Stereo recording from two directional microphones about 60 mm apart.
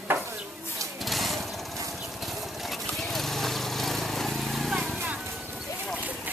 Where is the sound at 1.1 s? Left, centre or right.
Centre.